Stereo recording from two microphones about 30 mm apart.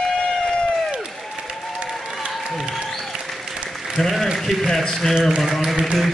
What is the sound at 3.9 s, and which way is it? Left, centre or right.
Applause, centre.